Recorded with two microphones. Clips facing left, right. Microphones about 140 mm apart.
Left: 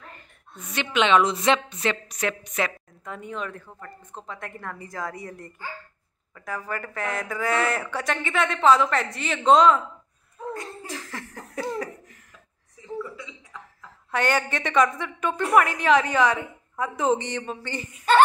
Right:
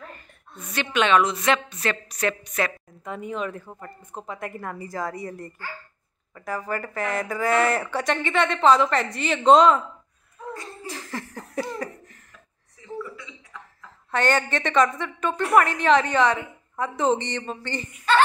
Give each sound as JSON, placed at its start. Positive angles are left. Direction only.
{"t": 0.7, "sound": "a woman's voice", "side_deg": 20}
{"t": 3.0, "sound": "speech", "side_deg": -5}
{"t": 10.9, "sound": "speech", "side_deg": 0}
{"t": 14.1, "sound": "a woman's voice", "side_deg": 10}